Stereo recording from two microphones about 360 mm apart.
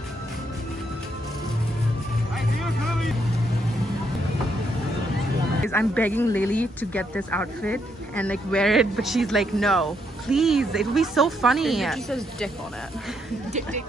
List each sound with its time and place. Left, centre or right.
2.6 s vehicle: centre
5.7 s speech: centre
13.5 s speech: centre